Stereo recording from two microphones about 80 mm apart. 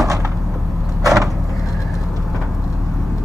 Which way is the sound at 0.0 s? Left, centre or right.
Right.